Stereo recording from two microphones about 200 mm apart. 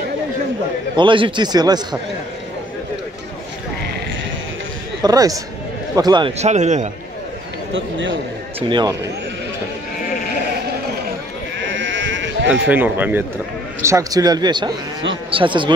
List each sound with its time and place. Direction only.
0.9 s a man's voice: 25° right (ahead or behind)
5.0 s a man's voice: 20° right (ahead or behind); by 6.9 s 35° right (ahead or behind)
7.7 s a man's voice: 70° right (ahead or behind)
8.5 s a man's voice: 25° right (ahead or behind)
11.6 s sheep: 70° right (ahead or behind)
12.6 s a man's voice: 10° right (ahead or behind); by 15.7 s 25° right (ahead or behind)